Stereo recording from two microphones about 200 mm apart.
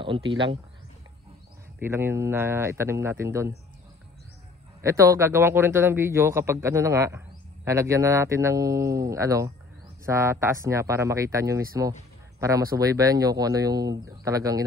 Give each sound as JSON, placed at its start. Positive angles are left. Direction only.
{"t": 0.0, "sound": "speech", "side_deg": -25}
{"t": 1.8, "sound": "a man's voice", "side_deg": -10}
{"t": 4.8, "sound": "a man's voice", "side_deg": -15}